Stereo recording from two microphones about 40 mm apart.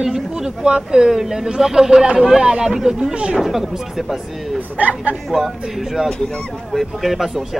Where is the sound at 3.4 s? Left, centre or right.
Centre.